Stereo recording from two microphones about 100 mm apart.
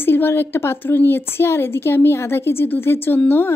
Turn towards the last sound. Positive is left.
turn(degrees=20)  # may be behind; listen again after turning